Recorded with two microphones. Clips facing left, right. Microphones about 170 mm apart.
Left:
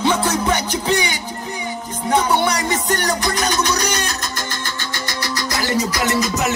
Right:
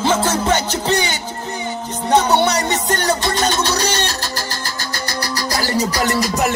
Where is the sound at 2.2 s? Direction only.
25° right (ahead or behind).